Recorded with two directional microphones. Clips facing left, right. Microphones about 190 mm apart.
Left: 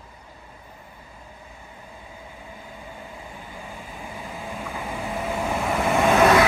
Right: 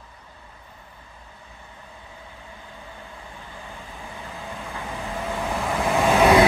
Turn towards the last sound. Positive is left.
turn(degrees=0)  # may be behind; listen again after turning